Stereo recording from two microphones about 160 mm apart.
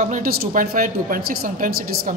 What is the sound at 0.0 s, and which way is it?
A man's voice, 60° right (ahead or behind).